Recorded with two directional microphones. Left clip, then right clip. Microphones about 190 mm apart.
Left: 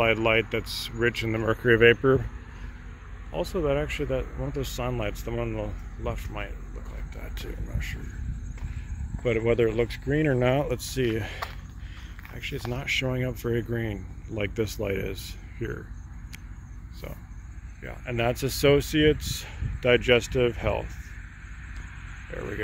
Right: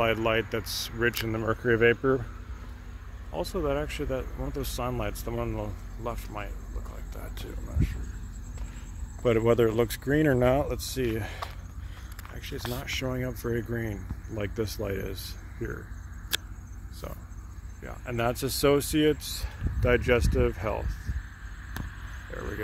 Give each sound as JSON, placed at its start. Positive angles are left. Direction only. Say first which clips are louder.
{"t": 0.0, "sound": "speech", "louder": "left 3 dB", "side_deg": -5}
{"t": 3.5, "sound": "speech", "louder": "left 3 dB", "side_deg": 0}
{"t": 9.2, "sound": "speech", "louder": "right 1 dB", "side_deg": -35}
{"t": 10.4, "sound": "speech", "louder": "even", "side_deg": -10}
{"t": 17.8, "sound": "speech", "louder": "left 2 dB", "side_deg": -5}